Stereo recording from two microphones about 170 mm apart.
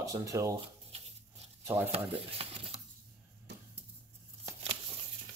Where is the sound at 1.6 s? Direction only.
15° right (ahead or behind).